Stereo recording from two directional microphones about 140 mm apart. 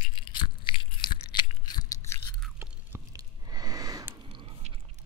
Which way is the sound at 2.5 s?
20° right (ahead or behind).